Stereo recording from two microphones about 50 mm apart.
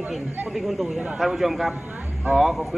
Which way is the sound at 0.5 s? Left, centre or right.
Centre.